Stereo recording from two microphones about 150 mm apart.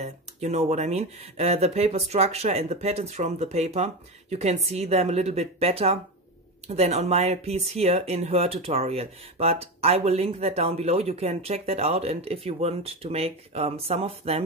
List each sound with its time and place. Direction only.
0.0 s speech: 45° right (ahead or behind)